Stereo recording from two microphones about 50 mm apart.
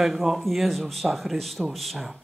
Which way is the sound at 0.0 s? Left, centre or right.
Centre.